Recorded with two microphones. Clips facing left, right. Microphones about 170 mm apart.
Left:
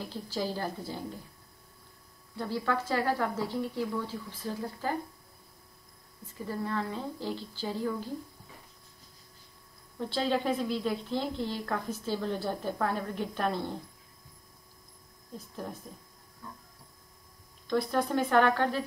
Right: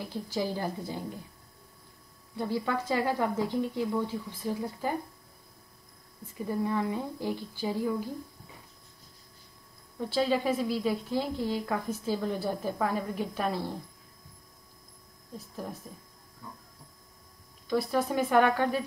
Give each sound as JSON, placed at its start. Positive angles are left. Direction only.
{"t": 0.0, "sound": "a woman's voice", "side_deg": -15}
{"t": 2.3, "sound": "a woman's voice", "side_deg": -15}
{"t": 6.3, "sound": "a woman's voice", "side_deg": -15}
{"t": 9.9, "sound": "a woman's voice", "side_deg": -5}
{"t": 15.3, "sound": "speech", "side_deg": -5}
{"t": 16.4, "sound": "a sound", "side_deg": -15}
{"t": 17.6, "sound": "a woman's voice", "side_deg": -5}